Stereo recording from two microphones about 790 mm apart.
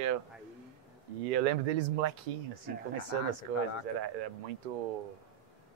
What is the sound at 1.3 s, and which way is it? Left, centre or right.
Speech, right.